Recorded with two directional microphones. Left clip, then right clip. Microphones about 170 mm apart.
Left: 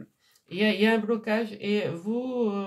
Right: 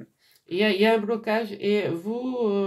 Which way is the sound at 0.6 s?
35° right (ahead or behind).